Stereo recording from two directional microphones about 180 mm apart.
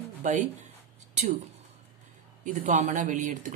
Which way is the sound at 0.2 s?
45° right (ahead or behind).